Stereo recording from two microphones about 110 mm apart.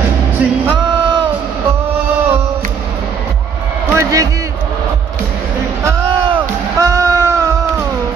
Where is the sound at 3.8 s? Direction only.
30° right (ahead or behind).